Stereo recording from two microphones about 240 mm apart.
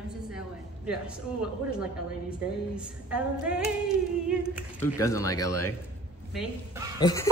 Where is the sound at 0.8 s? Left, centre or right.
Centre.